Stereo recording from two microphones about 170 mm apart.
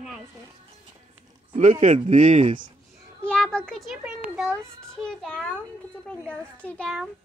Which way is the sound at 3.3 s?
5° left (ahead or behind).